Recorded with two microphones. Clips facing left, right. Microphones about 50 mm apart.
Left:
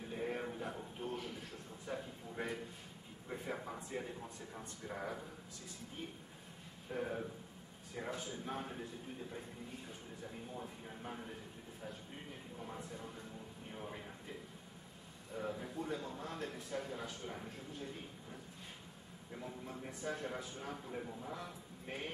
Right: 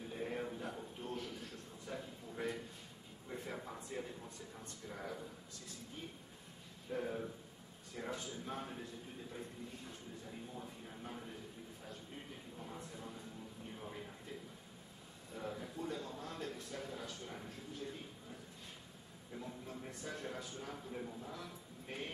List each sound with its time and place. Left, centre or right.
0.1 s a sound: centre
3.3 s a man's voice: centre
6.9 s a man's voice: centre
10.5 s a man's voice: centre
15.3 s a man's voice: centre
19.7 s a man's voice: centre